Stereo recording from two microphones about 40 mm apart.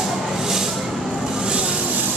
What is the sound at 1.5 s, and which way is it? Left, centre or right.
Vehicle, right.